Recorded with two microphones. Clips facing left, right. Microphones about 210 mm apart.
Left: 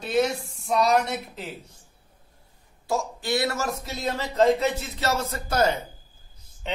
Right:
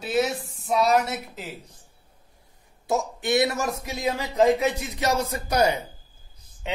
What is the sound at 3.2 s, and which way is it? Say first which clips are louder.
Speech: right 3 dB; 20° right (ahead or behind).